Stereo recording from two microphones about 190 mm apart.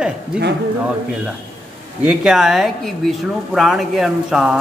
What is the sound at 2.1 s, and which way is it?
Speech, centre (ahead or behind).